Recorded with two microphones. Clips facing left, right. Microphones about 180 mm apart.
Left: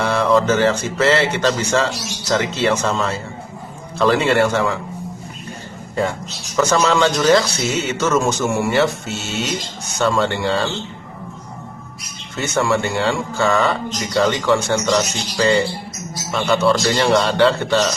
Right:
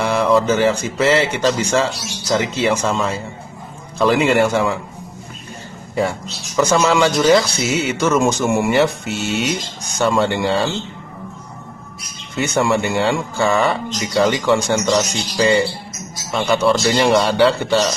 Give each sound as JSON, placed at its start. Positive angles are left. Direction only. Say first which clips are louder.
{"t": 0.0, "sound": "speech", "louder": "right 1 dB", "side_deg": -15}
{"t": 5.9, "sound": "speech", "louder": "right 1 dB", "side_deg": -10}
{"t": 12.4, "sound": "speech", "louder": "right 1 dB", "side_deg": -15}